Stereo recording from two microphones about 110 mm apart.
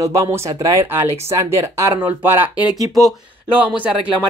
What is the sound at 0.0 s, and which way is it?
Speech, 30° right (ahead or behind).